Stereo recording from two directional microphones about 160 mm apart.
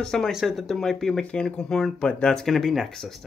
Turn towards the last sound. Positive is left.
turn(degrees=0)  # may be behind; listen again after turning